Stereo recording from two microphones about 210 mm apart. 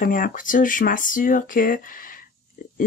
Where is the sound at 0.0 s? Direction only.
40° left (ahead or behind).